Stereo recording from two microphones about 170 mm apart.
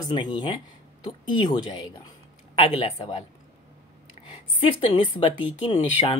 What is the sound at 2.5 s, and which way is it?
Speech, 35° left (ahead or behind).